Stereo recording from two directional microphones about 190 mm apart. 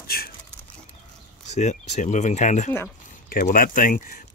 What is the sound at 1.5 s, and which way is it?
Speech, 35° left (ahead or behind).